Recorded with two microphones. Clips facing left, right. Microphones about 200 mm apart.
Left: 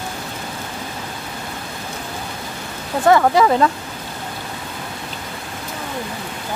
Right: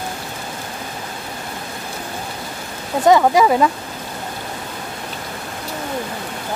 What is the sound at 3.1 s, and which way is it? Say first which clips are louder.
Speech: right 1 dB; 15° right (ahead or behind).